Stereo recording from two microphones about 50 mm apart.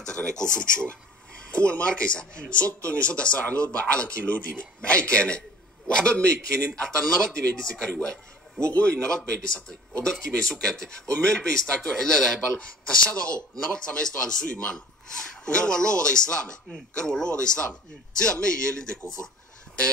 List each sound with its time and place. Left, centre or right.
0.0 s a man's voice: centre
12.5 s a man's voice: left